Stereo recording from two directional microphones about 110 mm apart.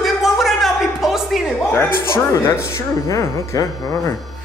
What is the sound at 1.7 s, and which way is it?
Speech, 25° left (ahead or behind).